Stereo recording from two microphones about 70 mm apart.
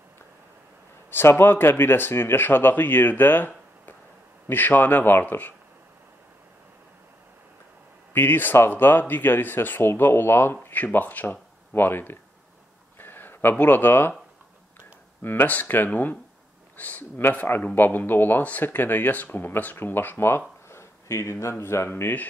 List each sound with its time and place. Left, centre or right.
1.1 s speech: left
8.1 s speech: left
15.2 s speech: left